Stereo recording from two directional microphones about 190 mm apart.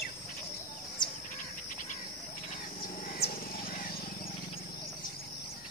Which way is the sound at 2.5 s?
45° left (ahead or behind).